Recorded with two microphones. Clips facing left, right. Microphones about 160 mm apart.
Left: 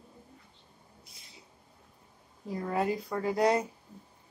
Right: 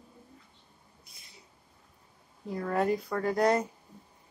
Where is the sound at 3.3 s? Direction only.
30° left (ahead or behind).